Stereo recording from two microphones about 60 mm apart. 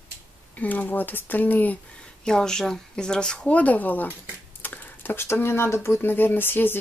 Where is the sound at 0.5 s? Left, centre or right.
Left.